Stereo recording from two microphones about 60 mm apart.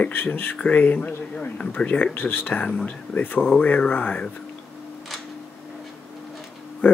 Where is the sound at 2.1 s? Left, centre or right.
Left.